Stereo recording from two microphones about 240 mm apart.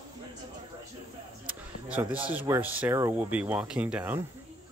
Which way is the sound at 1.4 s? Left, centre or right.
Centre.